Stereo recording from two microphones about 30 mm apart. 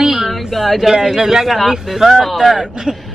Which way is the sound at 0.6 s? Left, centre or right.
Centre.